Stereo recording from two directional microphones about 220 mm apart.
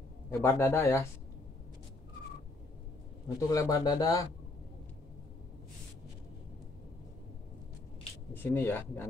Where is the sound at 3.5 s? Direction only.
15° left (ahead or behind).